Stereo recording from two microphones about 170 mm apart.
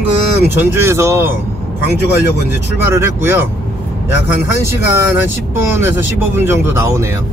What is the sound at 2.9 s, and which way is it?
Speech, 15° right (ahead or behind).